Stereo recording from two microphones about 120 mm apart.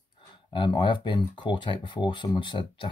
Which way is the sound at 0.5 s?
40° left (ahead or behind).